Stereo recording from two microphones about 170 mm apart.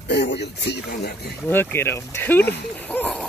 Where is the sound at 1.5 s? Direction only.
10° left (ahead or behind).